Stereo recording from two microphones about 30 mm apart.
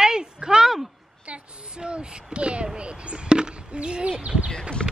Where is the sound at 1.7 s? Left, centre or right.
Right.